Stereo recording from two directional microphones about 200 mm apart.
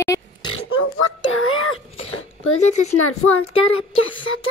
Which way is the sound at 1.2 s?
90° left.